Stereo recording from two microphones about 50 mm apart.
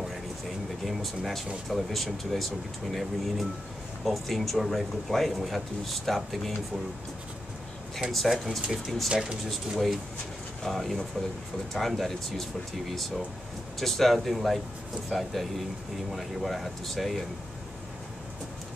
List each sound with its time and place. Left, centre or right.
0.8 s speech: centre
8.1 s speech: centre
9.1 s speech: centre
9.5 s speech: centre